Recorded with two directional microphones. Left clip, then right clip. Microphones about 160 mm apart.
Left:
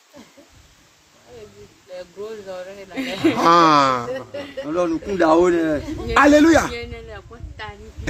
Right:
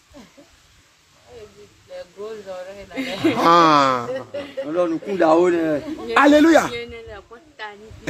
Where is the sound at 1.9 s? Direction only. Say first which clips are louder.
Even; 70° left (ahead or behind).